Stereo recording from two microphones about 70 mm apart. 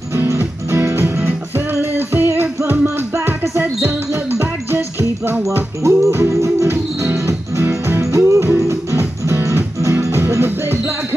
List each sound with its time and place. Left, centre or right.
0.1 s music: right
5.9 s music: right